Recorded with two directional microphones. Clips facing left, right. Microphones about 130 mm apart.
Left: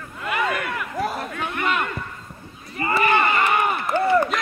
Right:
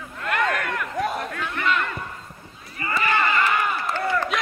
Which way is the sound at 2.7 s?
30° left (ahead or behind).